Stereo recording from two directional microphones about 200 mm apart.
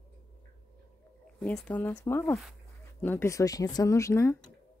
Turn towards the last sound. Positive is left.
turn(degrees=15)  # may be behind; listen again after turning